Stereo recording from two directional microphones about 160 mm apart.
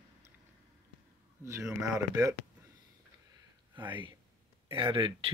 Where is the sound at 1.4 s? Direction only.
15° right (ahead or behind).